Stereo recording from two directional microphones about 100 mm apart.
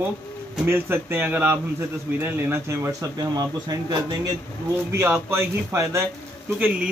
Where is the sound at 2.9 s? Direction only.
40° right (ahead or behind).